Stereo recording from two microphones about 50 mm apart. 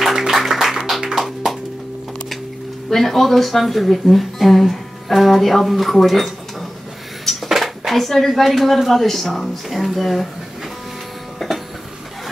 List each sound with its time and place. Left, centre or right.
0.0 s music: centre
2.9 s speech: centre
7.4 s speech: centre
11.3 s train: centre